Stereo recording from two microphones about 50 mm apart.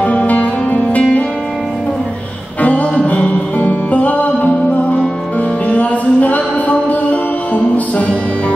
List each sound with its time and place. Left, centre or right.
0.0 s music: left
2.6 s music: left